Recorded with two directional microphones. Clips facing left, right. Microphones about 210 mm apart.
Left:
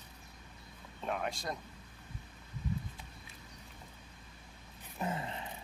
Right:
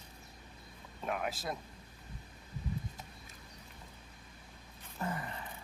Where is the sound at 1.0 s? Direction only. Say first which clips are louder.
Even; 5° right (ahead or behind).